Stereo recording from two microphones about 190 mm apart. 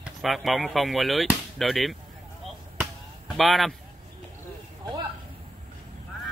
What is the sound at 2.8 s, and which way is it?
Basketball bounce, centre (ahead or behind).